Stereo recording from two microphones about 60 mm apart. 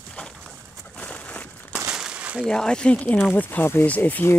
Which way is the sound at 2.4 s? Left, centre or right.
Centre.